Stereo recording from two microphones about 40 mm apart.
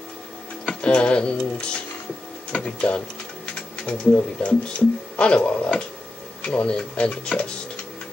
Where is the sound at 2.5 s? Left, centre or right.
Left.